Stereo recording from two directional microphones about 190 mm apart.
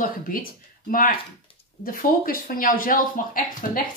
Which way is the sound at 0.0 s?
50° left (ahead or behind).